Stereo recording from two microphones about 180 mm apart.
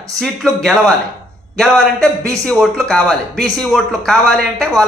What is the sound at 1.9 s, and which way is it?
Speech, 15° right (ahead or behind).